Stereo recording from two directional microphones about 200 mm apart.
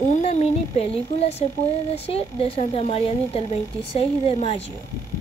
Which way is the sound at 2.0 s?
30° left (ahead or behind).